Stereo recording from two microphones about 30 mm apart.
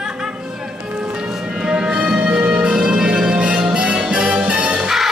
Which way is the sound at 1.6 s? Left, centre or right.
Right.